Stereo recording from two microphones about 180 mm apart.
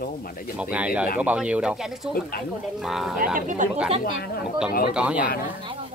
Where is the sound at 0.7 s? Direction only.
5° right (ahead or behind).